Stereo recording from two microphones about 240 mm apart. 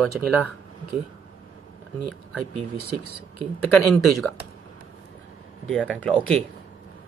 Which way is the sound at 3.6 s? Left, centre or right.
Centre.